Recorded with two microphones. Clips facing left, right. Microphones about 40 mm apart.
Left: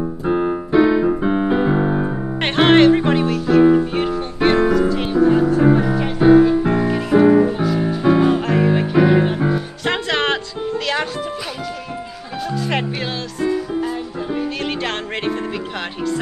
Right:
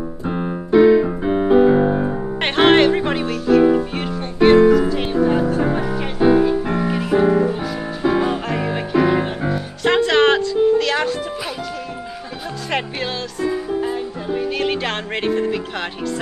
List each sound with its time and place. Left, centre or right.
0.3 s keyboard: centre
0.7 s keyboard: centre
2.4 s music: centre
12.6 s music: centre